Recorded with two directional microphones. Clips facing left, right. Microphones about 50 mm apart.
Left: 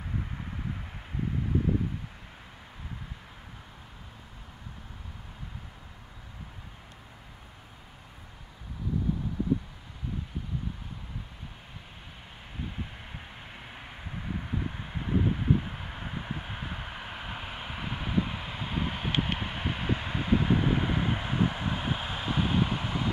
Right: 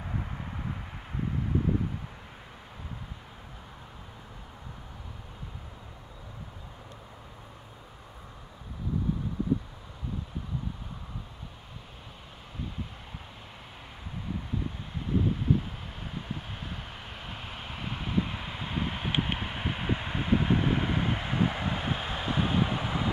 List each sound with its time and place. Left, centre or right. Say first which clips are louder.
0.1 s vehicle: left 1 dB; centre
14.5 s vehicle: left 1 dB; left; by 23.1 s centre